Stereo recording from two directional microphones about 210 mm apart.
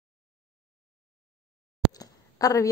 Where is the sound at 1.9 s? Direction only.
15° left (ahead or behind).